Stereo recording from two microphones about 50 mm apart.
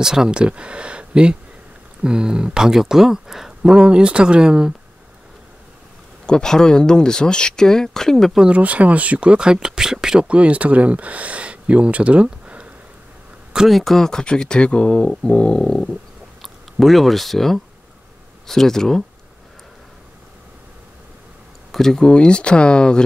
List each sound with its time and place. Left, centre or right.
0.0 s speech: centre
0.4 s speech: right
6.2 s speech: centre
8.5 s speech: right
13.7 s speech: centre
16.3 s speech: centre
21.7 s speech: centre